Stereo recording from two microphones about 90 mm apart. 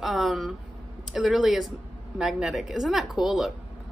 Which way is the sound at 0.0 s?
Centre (ahead or behind).